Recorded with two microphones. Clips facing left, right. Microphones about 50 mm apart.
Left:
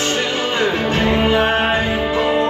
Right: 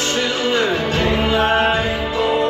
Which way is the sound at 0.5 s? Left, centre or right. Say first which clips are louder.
Left 2 dB; left.